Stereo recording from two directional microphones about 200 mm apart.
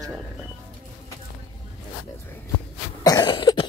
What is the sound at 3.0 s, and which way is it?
Cough, 20° left (ahead or behind).